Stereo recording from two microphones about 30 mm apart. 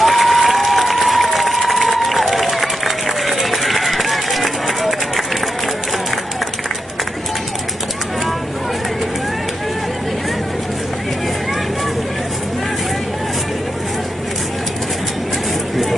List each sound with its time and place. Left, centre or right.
0.0 s applause: centre